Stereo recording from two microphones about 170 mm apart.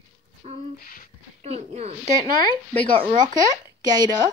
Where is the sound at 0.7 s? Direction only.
55° left (ahead or behind).